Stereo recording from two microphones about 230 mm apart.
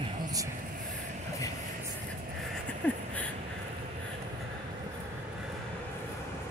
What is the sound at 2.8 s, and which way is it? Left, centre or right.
Speech, centre.